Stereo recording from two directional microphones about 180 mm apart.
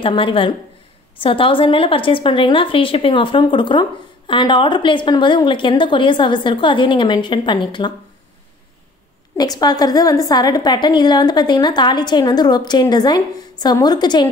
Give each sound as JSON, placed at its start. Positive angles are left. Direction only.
{"t": 0.0, "sound": "a woman's voice", "side_deg": 30}
{"t": 9.4, "sound": "a woman's voice", "side_deg": 20}